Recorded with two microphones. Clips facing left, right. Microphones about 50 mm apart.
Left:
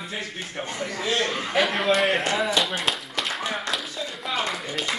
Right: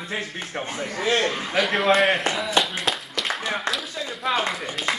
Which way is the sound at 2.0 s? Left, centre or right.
Centre.